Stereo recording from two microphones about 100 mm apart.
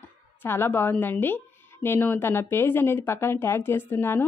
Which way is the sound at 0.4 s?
20° left (ahead or behind).